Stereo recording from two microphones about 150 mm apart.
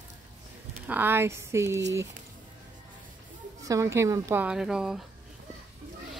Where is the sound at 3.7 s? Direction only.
20° right (ahead or behind).